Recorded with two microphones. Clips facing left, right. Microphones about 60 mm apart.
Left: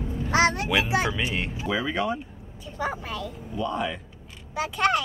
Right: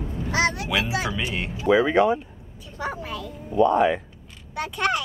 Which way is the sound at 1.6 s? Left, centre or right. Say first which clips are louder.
Right 10 dB; centre.